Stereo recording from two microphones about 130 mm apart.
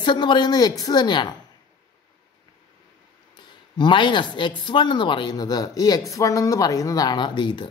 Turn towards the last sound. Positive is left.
turn(degrees=35)  # may be behind; listen again after turning